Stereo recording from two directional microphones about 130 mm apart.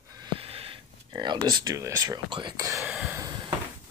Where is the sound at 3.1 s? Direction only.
25° right (ahead or behind).